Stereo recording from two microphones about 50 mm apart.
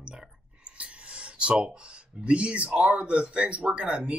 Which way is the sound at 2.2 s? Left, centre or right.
Right.